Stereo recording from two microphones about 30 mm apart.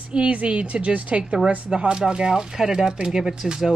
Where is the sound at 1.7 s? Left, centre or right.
Right.